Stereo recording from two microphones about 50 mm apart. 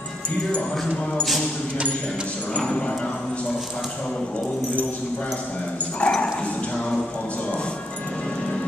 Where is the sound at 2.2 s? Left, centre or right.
Left.